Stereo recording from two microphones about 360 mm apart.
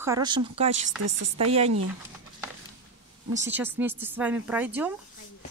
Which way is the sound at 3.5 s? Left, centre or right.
Centre.